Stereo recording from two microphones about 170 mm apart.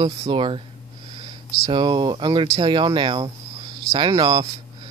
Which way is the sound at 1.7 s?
25° right (ahead or behind).